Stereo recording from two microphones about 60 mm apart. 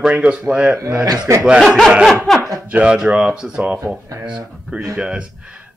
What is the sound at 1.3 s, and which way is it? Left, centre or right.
Speech, right.